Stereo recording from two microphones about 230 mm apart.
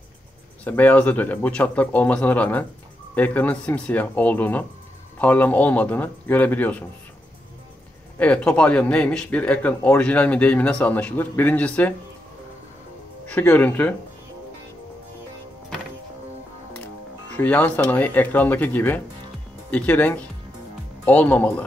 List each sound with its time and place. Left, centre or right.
0.7 s speech: centre
8.2 s speech: centre
13.3 s speech: centre
17.4 s speech: centre